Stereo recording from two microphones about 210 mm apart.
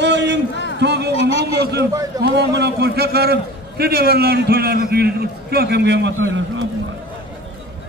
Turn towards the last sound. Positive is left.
turn(degrees=-65)  # may be behind; listen again after turning